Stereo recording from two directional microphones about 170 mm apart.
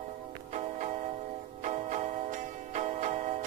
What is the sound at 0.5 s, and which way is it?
Music, 40° right (ahead or behind).